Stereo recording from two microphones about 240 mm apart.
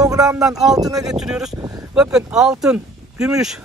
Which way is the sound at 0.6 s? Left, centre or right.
Centre.